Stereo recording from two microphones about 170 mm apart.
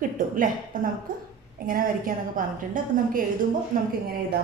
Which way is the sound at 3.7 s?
55° right (ahead or behind).